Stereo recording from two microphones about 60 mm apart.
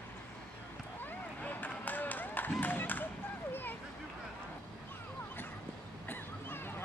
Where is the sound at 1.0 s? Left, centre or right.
Left.